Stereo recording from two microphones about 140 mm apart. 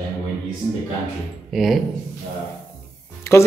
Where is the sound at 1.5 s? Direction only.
Centre (ahead or behind).